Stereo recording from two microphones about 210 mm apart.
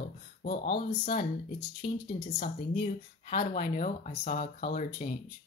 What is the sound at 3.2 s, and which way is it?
Speech, 30° left (ahead or behind).